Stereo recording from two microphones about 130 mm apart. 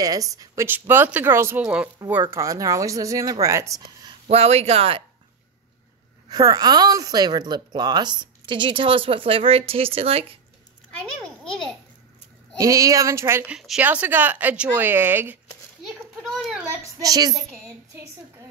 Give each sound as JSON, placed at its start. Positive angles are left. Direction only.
{"t": 0.0, "sound": "speech", "side_deg": -25}
{"t": 4.3, "sound": "speech", "side_deg": -50}
{"t": 6.2, "sound": "a woman's voice", "side_deg": -30}
{"t": 11.2, "sound": "a child's voice", "side_deg": 5}
{"t": 12.5, "sound": "speech", "side_deg": -25}
{"t": 13.5, "sound": "a child's voice", "side_deg": -5}
{"t": 15.9, "sound": "children playing", "side_deg": 0}
{"t": 17.0, "sound": "speech", "side_deg": -30}